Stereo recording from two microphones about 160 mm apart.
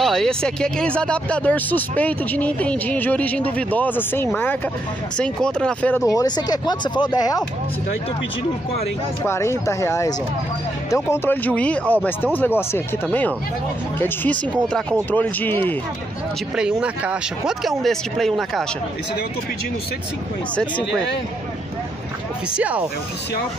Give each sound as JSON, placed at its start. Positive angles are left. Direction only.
{"t": 0.0, "sound": "speech", "side_deg": 5}
{"t": 6.1, "sound": "speech", "side_deg": 25}
{"t": 9.2, "sound": "speech", "side_deg": 15}
{"t": 16.5, "sound": "speech", "side_deg": -5}
{"t": 22.6, "sound": "speech", "side_deg": -10}